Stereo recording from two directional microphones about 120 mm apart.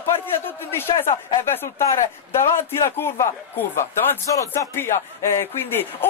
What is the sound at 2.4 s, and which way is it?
Speech, 25° left (ahead or behind).